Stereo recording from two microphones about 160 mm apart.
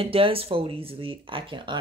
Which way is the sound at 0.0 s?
35° right (ahead or behind).